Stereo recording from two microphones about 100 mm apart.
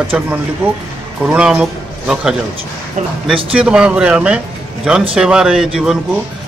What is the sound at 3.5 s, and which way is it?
A man's voice, 10° right (ahead or behind).